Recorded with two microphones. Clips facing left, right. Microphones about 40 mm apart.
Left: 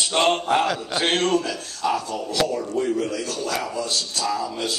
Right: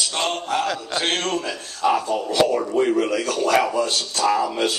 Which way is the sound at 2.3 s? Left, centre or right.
Right.